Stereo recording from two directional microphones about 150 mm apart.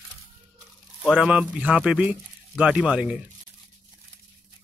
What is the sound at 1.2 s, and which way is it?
Speech, 10° right (ahead or behind).